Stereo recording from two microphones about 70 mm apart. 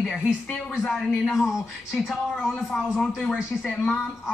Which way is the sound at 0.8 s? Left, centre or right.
Centre.